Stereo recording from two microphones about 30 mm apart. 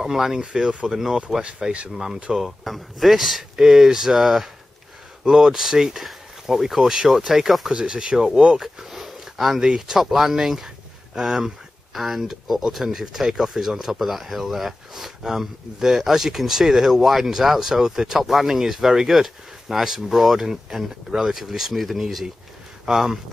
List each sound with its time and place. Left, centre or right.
0.0 s speech: centre
1.6 s speech: right
2.3 s speech: centre
5.9 s speech: centre
7.7 s speech: right
8.5 s a sound: centre
9.8 s speech: centre
20.4 s speech: centre
22.8 s speech: centre